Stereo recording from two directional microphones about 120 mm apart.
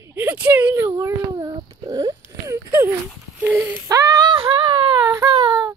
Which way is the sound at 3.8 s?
30° right (ahead or behind).